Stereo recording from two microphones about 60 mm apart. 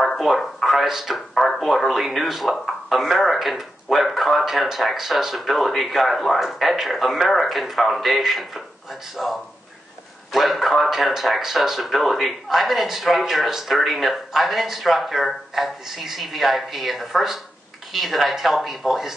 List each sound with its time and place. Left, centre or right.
0.0 s speech: centre